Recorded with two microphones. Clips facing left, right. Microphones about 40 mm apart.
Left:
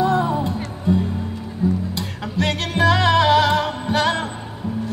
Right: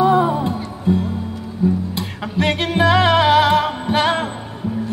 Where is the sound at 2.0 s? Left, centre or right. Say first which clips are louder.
Right 2 dB; right.